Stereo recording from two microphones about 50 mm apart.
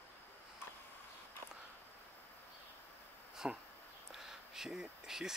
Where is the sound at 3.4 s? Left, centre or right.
Right.